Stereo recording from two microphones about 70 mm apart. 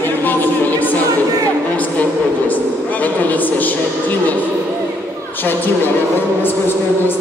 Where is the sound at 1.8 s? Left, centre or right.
Left.